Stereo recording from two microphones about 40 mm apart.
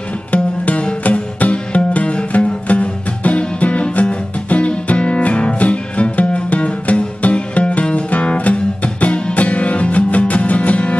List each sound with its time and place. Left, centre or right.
0.3 s music: left